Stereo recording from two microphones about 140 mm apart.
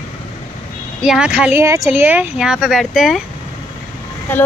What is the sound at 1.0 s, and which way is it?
Speech, 5° right (ahead or behind).